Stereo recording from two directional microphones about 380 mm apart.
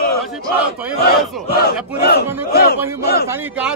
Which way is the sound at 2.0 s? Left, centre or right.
Left.